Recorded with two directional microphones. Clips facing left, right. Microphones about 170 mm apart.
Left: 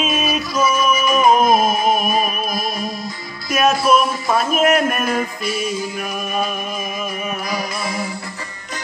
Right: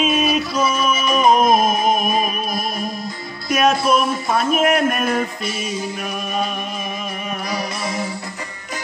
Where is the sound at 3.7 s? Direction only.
60° right (ahead or behind).